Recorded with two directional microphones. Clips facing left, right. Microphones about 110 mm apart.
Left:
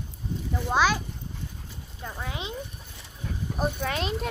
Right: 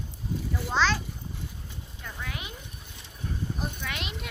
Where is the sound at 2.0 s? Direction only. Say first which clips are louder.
Left 4 dB; 25° left (ahead or behind).